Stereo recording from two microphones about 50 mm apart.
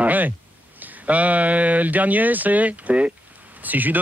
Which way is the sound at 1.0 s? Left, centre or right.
Right.